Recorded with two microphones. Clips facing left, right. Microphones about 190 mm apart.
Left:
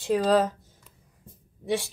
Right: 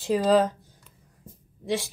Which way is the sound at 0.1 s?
Centre (ahead or behind).